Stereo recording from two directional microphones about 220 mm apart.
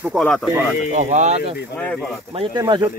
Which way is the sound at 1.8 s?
5° left (ahead or behind).